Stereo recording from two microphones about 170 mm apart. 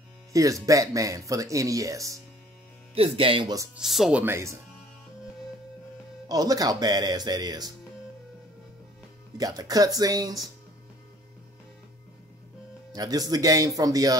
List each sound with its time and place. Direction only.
0.3 s speech: 20° right (ahead or behind)
2.9 s speech: 35° right (ahead or behind)
3.7 s speech: centre (ahead or behind)
4.2 s speech: 15° right (ahead or behind)
6.2 s speech: 20° right (ahead or behind)
9.4 s speech: 20° right (ahead or behind)
12.9 s speech: 20° right (ahead or behind)